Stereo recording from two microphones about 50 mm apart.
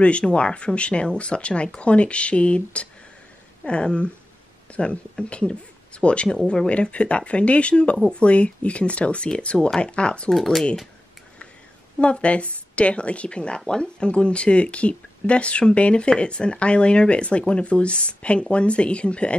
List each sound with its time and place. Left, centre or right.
0.0 s speech: left
10.3 s speech: centre
12.0 s speech: left